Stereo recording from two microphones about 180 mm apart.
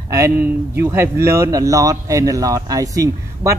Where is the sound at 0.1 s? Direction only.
15° right (ahead or behind).